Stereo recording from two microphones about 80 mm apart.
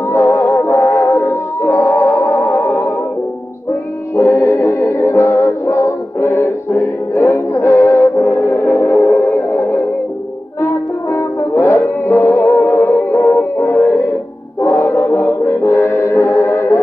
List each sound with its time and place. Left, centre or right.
0.1 s music: left
4.2 s music: left
11.1 s music: left